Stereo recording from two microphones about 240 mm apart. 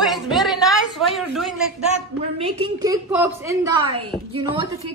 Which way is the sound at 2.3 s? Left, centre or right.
Right.